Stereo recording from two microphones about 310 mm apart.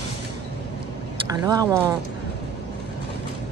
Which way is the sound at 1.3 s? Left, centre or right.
Centre.